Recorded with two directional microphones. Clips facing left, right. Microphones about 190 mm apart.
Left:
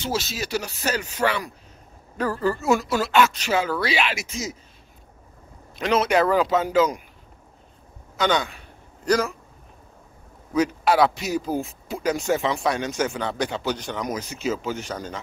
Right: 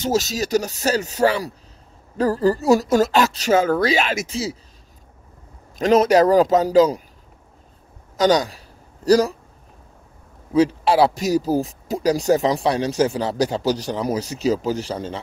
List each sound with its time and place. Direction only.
0.0 s speech: 40° right (ahead or behind)
4.3 s speech: 30° right (ahead or behind)
5.8 s speech: 40° right (ahead or behind)
8.2 s a sound: 40° right (ahead or behind)
10.5 s speech: 30° right (ahead or behind)